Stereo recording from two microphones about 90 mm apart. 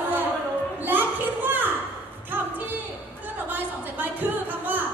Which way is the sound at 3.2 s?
20° right (ahead or behind).